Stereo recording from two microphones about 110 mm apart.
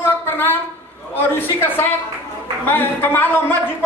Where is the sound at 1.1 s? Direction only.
20° left (ahead or behind).